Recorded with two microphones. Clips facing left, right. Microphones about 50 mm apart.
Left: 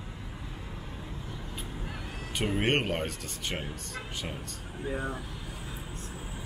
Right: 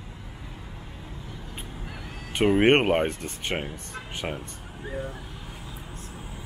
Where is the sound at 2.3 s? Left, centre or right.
Right.